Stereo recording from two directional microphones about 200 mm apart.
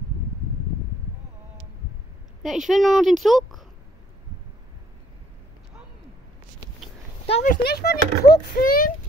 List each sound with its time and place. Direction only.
2.4 s a woman's voice: centre (ahead or behind)
7.4 s speech: 50° left (ahead or behind)